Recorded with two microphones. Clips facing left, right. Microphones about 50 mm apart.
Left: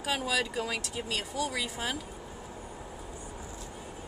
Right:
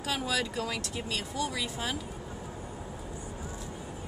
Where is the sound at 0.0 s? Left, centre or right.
Centre.